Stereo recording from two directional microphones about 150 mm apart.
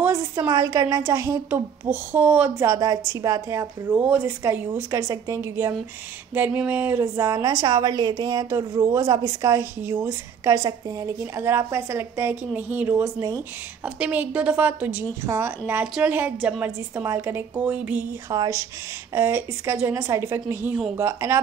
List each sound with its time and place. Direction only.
0.0 s a sound: 15° right (ahead or behind)
0.5 s a woman's voice: 25° right (ahead or behind)
2.6 s a woman's voice: 20° right (ahead or behind)
13.8 s a woman's voice: 10° right (ahead or behind)
18.3 s a woman's voice: 20° right (ahead or behind)